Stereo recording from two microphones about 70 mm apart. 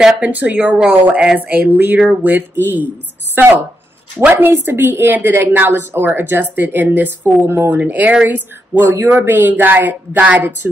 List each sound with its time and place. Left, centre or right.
0.0 s a woman's voice: right
7.8 s speech: right
8.3 s speech: right